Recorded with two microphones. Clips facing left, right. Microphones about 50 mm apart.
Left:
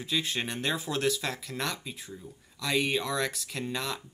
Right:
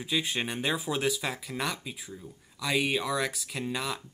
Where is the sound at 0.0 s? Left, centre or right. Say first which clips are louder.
Right 1 dB; centre.